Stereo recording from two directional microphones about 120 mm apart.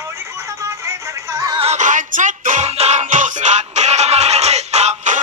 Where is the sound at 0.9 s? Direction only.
25° right (ahead or behind).